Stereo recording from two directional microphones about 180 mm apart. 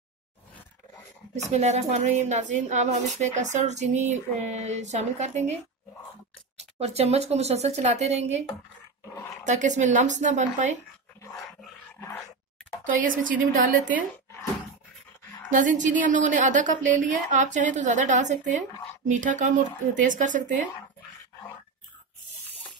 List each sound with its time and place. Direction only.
1.3 s speech: 40° right (ahead or behind)
6.5 s a woman's voice: 35° right (ahead or behind)
12.8 s a woman's voice: 45° right (ahead or behind)
15.5 s a woman's voice: 45° right (ahead or behind)